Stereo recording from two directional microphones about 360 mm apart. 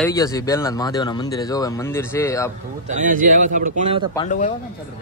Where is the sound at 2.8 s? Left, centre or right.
Right.